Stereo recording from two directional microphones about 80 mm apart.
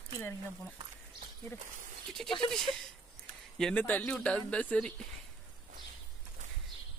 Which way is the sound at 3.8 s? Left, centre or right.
Centre.